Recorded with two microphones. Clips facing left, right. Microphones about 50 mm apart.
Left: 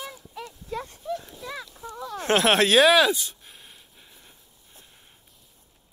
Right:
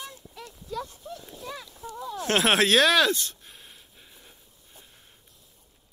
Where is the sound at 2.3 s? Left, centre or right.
Centre.